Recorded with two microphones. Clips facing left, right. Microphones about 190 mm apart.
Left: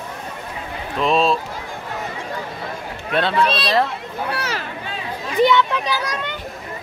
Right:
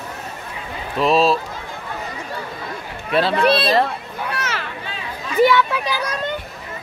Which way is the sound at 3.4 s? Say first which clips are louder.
Right 4 dB; 60° right (ahead or behind).